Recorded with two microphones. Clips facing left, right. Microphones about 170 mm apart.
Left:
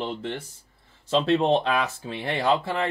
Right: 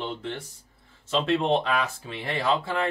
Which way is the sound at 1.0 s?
35° left (ahead or behind).